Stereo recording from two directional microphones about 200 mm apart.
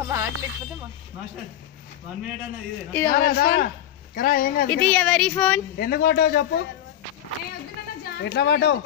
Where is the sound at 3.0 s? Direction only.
45° left (ahead or behind).